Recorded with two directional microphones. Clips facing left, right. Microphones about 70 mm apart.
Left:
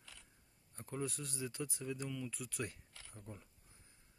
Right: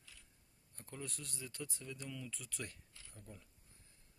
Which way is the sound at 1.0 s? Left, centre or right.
Centre.